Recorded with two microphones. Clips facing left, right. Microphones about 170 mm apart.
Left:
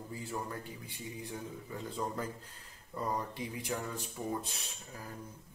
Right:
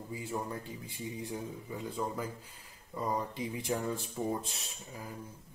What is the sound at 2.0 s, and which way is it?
Speech, 5° right (ahead or behind).